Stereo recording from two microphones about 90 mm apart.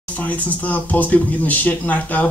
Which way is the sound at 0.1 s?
15° left (ahead or behind).